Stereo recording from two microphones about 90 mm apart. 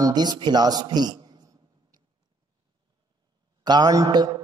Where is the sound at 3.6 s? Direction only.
50° right (ahead or behind).